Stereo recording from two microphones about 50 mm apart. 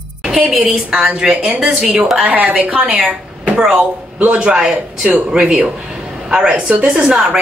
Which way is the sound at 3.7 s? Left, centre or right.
Right.